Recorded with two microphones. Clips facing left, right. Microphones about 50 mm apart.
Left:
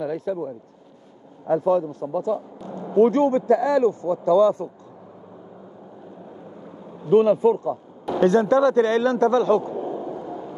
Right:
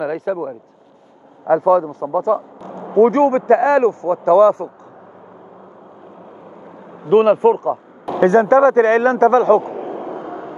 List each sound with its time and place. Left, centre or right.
0.0 s a man's voice: right
7.1 s a man's voice: right